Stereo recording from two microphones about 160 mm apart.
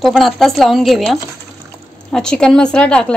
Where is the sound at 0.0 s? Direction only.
Centre (ahead or behind).